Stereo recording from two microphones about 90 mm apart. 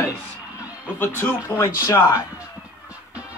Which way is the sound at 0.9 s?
25° left (ahead or behind).